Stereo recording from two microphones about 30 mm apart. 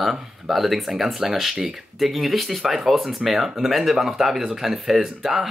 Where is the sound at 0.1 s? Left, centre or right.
Centre.